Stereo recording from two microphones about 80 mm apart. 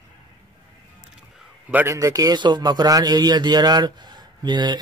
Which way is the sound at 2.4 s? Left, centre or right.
Right.